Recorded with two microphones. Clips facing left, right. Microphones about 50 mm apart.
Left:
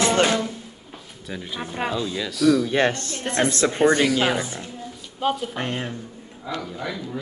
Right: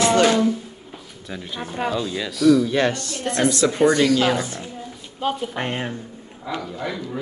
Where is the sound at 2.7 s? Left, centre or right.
Left.